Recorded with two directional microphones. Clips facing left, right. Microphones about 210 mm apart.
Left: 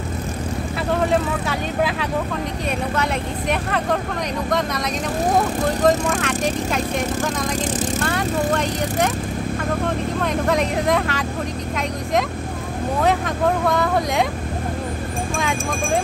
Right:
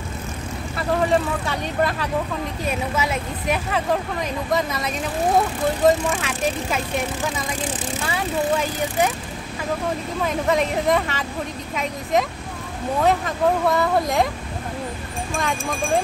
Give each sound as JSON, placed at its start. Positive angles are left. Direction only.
{"t": 0.7, "sound": "speech", "side_deg": 0}
{"t": 8.0, "sound": "speech", "side_deg": 0}
{"t": 10.2, "sound": "speech", "side_deg": 0}
{"t": 13.0, "sound": "speech", "side_deg": 0}